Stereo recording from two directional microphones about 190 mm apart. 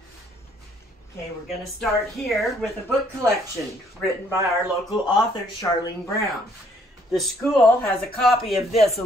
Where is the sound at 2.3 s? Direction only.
5° left (ahead or behind).